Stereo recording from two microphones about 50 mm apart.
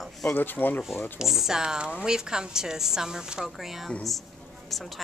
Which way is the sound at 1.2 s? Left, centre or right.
Centre.